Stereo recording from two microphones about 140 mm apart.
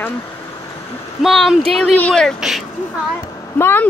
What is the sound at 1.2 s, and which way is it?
Speech, centre (ahead or behind).